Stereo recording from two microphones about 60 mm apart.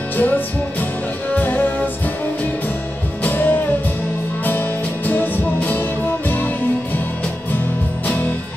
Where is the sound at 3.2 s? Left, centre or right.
Left.